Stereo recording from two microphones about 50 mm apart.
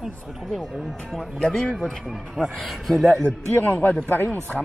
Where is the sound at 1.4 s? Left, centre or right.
Centre.